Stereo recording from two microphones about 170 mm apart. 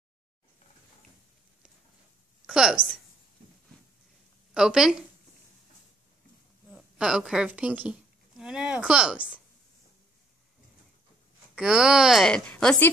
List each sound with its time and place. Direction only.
2.4 s a woman's voice: 5° right (ahead or behind)
4.6 s speech: 5° right (ahead or behind)
6.7 s speech: 5° right (ahead or behind)
11.5 s speech: 5° right (ahead or behind)